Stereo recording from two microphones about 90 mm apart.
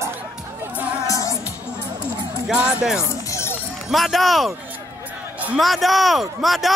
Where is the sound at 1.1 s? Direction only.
35° left (ahead or behind).